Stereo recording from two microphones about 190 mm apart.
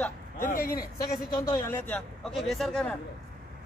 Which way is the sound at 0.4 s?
45° left (ahead or behind).